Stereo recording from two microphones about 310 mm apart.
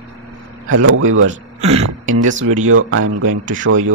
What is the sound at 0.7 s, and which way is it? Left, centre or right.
Speech, right.